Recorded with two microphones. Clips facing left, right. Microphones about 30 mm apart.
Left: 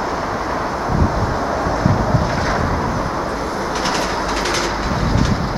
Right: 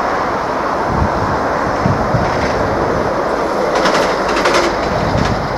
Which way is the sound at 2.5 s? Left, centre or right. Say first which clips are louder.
Right 5 dB; right.